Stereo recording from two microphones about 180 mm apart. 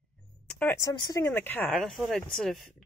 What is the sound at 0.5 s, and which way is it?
Speech, 10° left (ahead or behind).